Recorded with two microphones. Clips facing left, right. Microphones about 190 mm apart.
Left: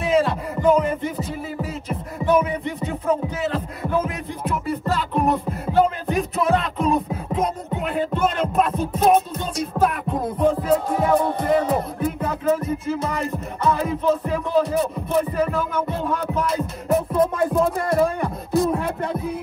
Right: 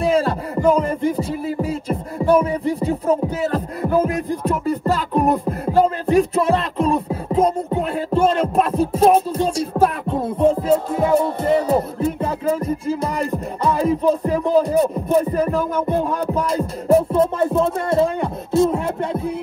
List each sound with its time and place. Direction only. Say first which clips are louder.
0.0 s music: right 2 dB; 35° right (ahead or behind)